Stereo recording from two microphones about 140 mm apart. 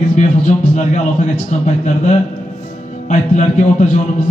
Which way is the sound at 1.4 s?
60° left (ahead or behind).